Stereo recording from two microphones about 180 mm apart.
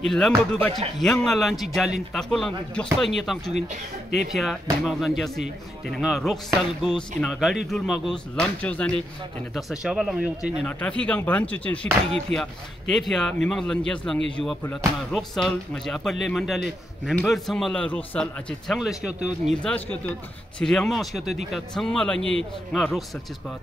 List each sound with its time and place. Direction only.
0.0 s a man's voice: centre (ahead or behind)
10.7 s a man's voice: 5° left (ahead or behind)